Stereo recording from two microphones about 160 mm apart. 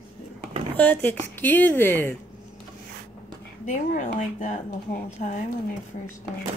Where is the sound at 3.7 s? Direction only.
50° left (ahead or behind).